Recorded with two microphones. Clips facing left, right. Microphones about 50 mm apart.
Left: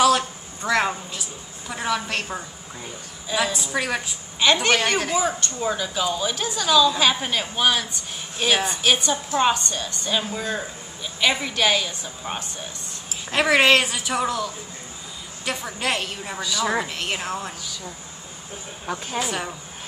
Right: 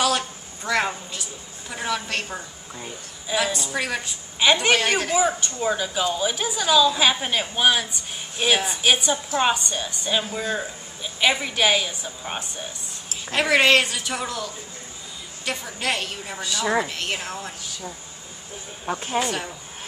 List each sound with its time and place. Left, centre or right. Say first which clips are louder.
0.0 s a sound: left 5 dB; centre
1.7 s speech: left 2 dB; centre
4.4 s a woman's voice: even; centre
4.7 s a woman's voice: right 1 dB; centre
13.3 s speech: left 1 dB; centre
18.9 s speech: right 2 dB; right
19.2 s speech: even; centre